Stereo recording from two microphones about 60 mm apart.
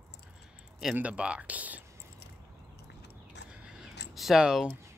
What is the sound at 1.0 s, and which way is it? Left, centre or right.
Speech, right.